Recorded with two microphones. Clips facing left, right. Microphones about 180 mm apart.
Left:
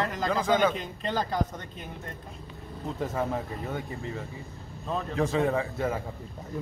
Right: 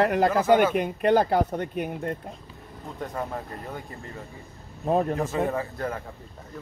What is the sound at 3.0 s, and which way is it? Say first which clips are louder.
Speech: left 2 dB; centre (ahead or behind).